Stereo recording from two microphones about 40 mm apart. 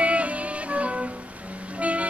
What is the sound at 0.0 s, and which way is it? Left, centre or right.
Music, right.